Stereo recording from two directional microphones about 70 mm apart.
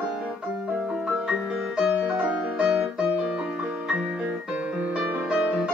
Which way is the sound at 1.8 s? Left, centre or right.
Centre.